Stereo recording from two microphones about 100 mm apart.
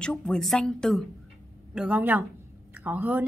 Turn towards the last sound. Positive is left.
turn(degrees=-15)  # may be behind; listen again after turning